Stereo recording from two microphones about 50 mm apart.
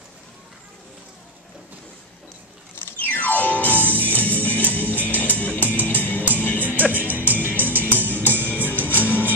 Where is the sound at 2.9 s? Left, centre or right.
Left.